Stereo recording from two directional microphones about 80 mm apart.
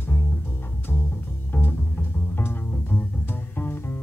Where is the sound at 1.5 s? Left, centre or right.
Left.